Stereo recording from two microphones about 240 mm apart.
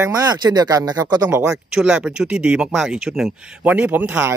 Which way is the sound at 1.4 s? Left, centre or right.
Centre.